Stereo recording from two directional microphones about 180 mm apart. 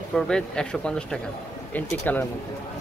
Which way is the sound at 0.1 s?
5° left (ahead or behind).